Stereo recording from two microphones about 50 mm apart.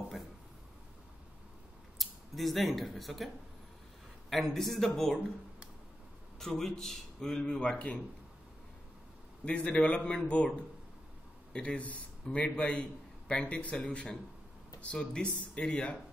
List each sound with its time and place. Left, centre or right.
2.0 s speech: centre
4.3 s a man's voice: centre
6.4 s a man's voice: centre
9.4 s speech: left
11.5 s speech: left